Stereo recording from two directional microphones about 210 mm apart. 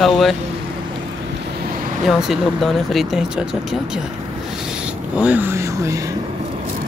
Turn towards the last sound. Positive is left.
turn(degrees=-15)  # may be behind; listen again after turning